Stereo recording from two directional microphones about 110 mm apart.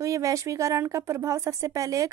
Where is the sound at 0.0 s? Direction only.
30° right (ahead or behind).